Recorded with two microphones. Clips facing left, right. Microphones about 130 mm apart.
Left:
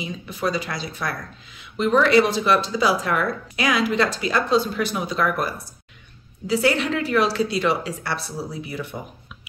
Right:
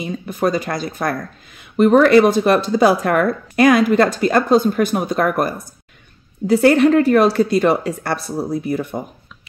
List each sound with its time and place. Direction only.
0.0 s speech: 50° right (ahead or behind)